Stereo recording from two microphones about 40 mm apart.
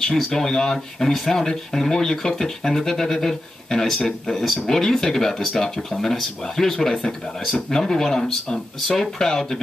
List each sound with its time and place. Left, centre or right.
0.1 s speech: centre